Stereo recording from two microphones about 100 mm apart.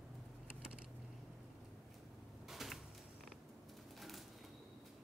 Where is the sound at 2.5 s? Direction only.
Centre (ahead or behind).